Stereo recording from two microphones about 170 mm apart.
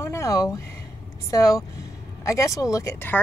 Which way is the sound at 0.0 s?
15° left (ahead or behind).